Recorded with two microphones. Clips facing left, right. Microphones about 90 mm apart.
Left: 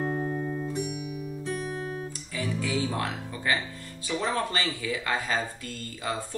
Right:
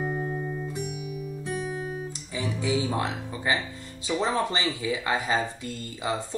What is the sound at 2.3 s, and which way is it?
Speech, 20° right (ahead or behind).